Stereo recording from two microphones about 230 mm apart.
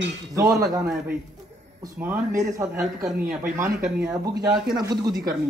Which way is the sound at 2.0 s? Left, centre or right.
Centre.